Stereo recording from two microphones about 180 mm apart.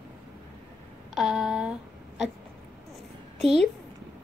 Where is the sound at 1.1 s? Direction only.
5° right (ahead or behind).